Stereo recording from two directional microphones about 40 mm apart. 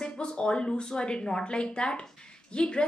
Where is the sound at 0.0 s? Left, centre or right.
Left.